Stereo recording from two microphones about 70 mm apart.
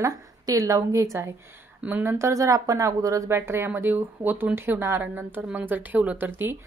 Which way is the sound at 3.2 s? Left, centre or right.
Right.